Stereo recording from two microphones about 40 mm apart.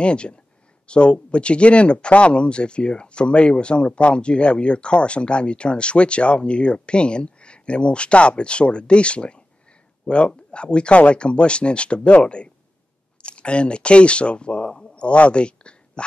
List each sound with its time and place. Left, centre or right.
0.0 s speech: left
13.2 s speech: left